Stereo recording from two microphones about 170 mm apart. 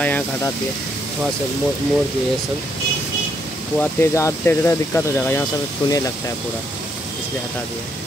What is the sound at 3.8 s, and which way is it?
Speech, 15° left (ahead or behind).